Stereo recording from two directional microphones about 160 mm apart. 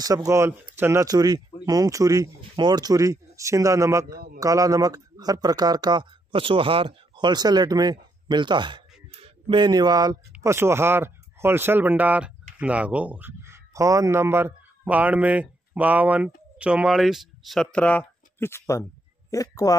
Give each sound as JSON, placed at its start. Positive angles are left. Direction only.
{"t": 0.0, "sound": "a man's voice", "side_deg": -20}